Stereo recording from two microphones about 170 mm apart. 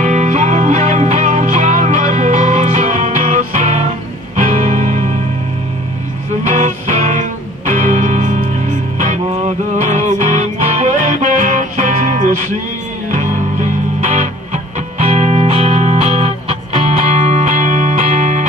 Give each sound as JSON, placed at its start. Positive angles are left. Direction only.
{"t": 0.0, "sound": "music", "side_deg": -45}
{"t": 6.4, "sound": "music", "side_deg": -45}
{"t": 14.1, "sound": "music", "side_deg": -45}